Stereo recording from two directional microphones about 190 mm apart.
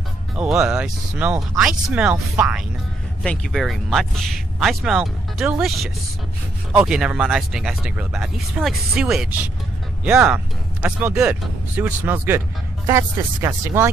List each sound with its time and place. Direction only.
0.4 s speech: 5° right (ahead or behind)